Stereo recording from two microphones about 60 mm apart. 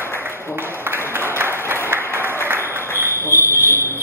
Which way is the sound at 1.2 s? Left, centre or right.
Right.